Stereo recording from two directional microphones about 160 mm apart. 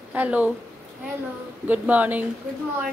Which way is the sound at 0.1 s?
10° right (ahead or behind).